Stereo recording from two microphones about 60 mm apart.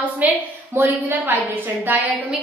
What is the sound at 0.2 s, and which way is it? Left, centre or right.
Speech, right.